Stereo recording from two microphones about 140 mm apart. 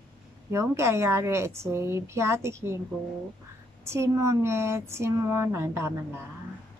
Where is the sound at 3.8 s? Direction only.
20° right (ahead or behind).